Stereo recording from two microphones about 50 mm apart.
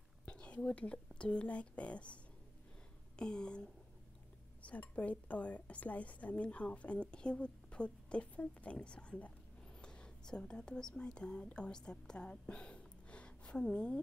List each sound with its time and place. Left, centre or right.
0.2 s whispering: left
1.1 s a woman's voice: left
3.2 s speech: centre
4.6 s a woman's voice: left